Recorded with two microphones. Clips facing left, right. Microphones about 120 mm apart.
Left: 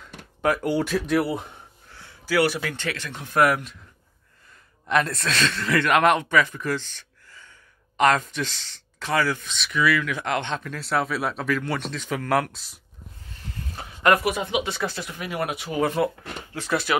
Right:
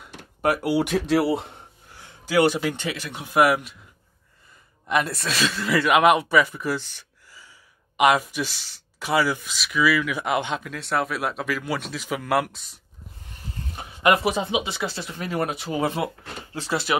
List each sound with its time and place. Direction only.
0.0 s a sound: 10° right (ahead or behind)
0.9 s speech: 30° right (ahead or behind)
1.6 s speech: 15° right (ahead or behind)
4.8 s speech: 5° right (ahead or behind)
13.3 s speech: 20° right (ahead or behind)